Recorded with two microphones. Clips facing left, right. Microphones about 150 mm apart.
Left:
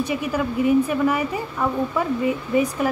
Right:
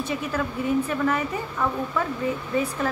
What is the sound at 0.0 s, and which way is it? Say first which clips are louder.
A woman's voice: left 4 dB; 10° left (ahead or behind).